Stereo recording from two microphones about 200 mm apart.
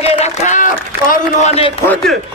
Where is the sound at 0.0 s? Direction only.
35° left (ahead or behind).